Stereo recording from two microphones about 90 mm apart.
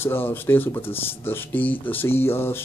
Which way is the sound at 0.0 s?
25° left (ahead or behind).